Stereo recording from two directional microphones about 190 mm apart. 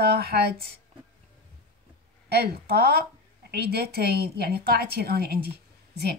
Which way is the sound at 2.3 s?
55° right (ahead or behind).